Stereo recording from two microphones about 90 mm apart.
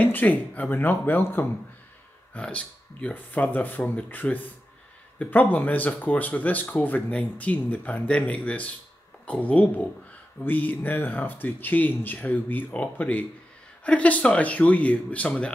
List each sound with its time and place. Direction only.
0.0 s speech: 20° left (ahead or behind)